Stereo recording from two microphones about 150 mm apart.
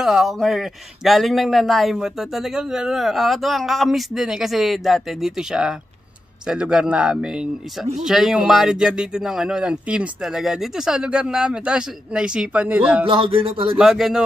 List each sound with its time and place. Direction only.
0.0 s speech: 5° right (ahead or behind)
13.0 s speech: 35° right (ahead or behind)
13.7 s speech: centre (ahead or behind)